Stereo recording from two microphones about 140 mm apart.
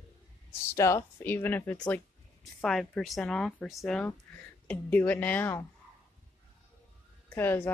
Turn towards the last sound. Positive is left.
turn(degrees=15)  # may be behind; listen again after turning